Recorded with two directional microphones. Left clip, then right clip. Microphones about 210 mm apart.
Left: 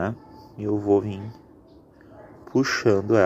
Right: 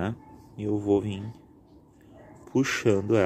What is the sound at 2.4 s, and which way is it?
Speech, 15° right (ahead or behind).